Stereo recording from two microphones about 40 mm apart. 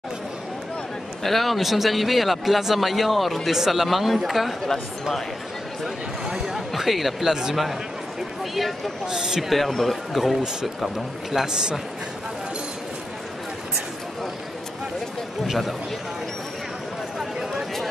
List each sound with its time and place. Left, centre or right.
1.2 s speech: centre
6.2 s a sound: centre
7.2 s a man's voice: centre
8.5 s speech: centre
9.0 s a man's voice: centre
9.4 s speech: centre
11.3 s a man's voice: centre
15.4 s speech: centre
17.2 s chatter: centre